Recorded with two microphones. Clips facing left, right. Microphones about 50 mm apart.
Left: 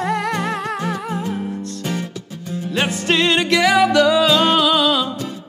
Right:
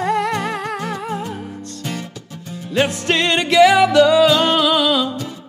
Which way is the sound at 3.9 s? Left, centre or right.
Centre.